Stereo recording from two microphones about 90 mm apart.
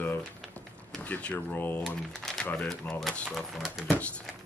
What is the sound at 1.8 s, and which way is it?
Speech, 5° left (ahead or behind).